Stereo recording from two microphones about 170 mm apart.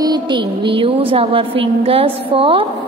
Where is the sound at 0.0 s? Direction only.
25° right (ahead or behind).